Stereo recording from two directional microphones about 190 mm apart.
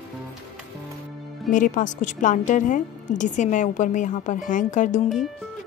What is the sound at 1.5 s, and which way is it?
A woman's voice, 40° left (ahead or behind).